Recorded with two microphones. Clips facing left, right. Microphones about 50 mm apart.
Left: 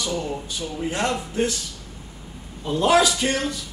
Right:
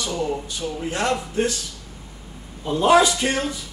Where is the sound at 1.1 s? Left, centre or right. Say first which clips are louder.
Right 2 dB; right.